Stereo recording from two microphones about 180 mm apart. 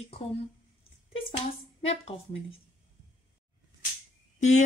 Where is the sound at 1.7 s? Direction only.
35° left (ahead or behind).